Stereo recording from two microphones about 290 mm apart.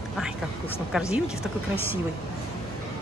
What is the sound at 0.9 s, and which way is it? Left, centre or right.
Speech, centre.